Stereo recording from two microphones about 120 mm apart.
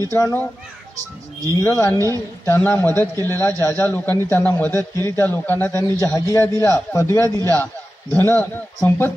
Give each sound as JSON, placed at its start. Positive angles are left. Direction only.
{"t": 0.1, "sound": "a man's voice", "side_deg": 20}
{"t": 1.6, "sound": "a man's voice", "side_deg": 20}
{"t": 5.9, "sound": "a man's voice", "side_deg": 25}